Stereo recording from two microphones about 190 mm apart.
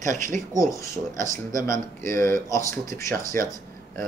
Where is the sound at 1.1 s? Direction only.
15° left (ahead or behind).